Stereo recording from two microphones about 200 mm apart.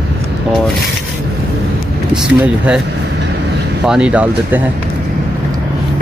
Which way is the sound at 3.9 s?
5° right (ahead or behind).